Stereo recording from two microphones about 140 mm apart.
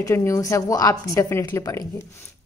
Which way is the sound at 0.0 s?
20° left (ahead or behind).